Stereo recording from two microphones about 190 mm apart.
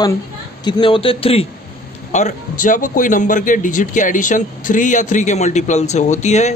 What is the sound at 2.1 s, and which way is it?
A man's voice, 40° left (ahead or behind).